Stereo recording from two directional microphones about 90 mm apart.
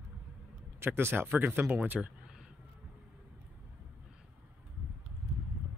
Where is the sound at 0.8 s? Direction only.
25° right (ahead or behind).